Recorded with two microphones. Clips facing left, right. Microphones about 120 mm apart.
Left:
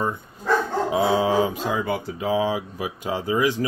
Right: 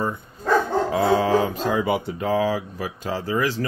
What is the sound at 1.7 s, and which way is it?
Speech, centre (ahead or behind).